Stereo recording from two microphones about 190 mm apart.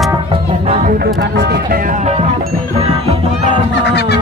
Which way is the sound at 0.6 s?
35° right (ahead or behind).